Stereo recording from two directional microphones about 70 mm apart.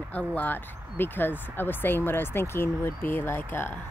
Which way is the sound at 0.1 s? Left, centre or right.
Left.